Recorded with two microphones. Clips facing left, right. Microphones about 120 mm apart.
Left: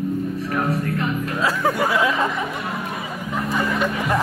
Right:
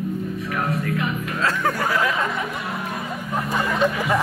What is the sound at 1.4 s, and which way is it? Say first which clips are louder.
Speech: left 2 dB; 5° left (ahead or behind).